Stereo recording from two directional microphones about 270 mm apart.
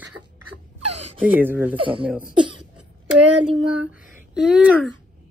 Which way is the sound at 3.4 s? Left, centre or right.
Centre.